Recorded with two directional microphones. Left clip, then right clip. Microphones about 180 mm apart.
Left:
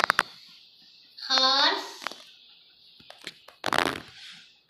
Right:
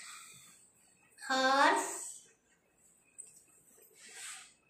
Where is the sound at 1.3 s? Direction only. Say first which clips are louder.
Left 6 dB; 10° right (ahead or behind).